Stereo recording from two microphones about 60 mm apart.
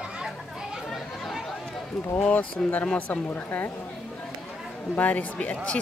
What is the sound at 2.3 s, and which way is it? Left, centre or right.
Speech, left.